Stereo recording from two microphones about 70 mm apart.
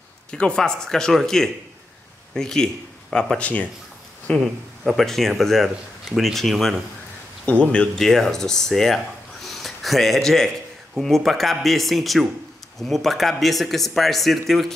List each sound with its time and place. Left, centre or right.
0.3 s speech: centre
4.4 s speech: centre
7.4 s speech: centre
8.0 s speech: centre